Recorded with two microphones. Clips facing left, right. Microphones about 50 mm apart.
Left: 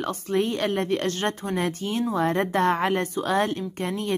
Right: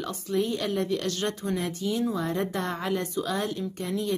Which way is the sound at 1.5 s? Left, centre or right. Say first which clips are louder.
Left 3 dB; left.